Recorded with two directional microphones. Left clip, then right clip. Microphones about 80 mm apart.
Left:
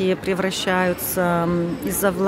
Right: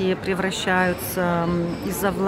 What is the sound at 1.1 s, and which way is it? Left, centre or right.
Speech, left.